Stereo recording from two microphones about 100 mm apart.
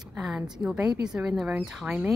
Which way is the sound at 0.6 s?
10° right (ahead or behind).